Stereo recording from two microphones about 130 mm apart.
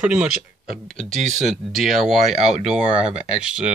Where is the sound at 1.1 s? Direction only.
70° right (ahead or behind).